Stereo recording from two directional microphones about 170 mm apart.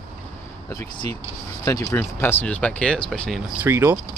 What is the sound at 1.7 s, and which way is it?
Speech, 15° left (ahead or behind).